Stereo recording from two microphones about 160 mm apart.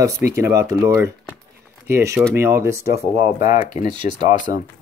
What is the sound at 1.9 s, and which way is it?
Speech, 15° right (ahead or behind).